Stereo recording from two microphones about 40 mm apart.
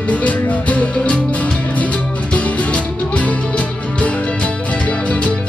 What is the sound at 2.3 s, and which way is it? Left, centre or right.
Music, left.